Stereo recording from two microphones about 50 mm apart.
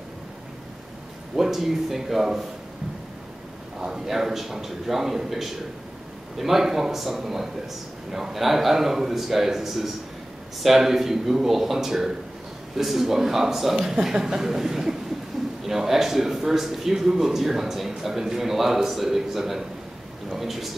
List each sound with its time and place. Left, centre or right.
1.3 s a man's voice: centre
3.8 s a man's voice: centre